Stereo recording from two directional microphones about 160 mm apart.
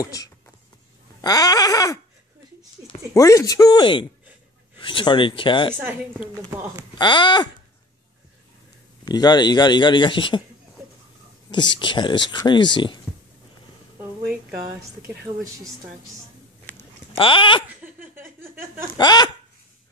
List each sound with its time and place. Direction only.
0.0 s speech: 20° left (ahead or behind)
3.2 s speech: 20° left (ahead or behind)
5.8 s a woman's voice: 10° right (ahead or behind)
7.0 s speech: 30° left (ahead or behind)
9.0 s speech: 25° left (ahead or behind)
11.5 s speech: 30° left (ahead or behind)
16.7 s a sound: 35° left (ahead or behind)
17.7 s a sound: 10° right (ahead or behind)
18.9 s speech: 25° left (ahead or behind)